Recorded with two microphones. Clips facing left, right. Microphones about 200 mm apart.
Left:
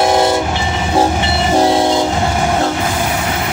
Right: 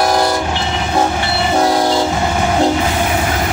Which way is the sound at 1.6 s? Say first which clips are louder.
Left 2 dB; 25° left (ahead or behind).